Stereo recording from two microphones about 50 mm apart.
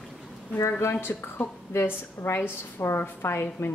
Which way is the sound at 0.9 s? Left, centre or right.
Left.